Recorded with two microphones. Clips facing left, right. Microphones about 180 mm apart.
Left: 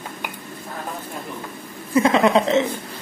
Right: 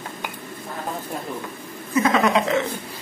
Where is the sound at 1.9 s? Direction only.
30° left (ahead or behind).